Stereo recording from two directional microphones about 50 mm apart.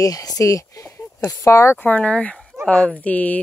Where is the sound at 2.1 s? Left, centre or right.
Left.